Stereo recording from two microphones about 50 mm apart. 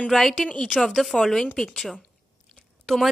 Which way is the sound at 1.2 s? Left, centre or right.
Centre.